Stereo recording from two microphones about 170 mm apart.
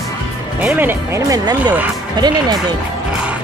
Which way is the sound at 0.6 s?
10° right (ahead or behind).